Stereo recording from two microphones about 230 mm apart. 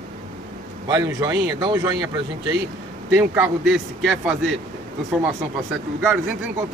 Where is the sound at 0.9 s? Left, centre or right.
Centre.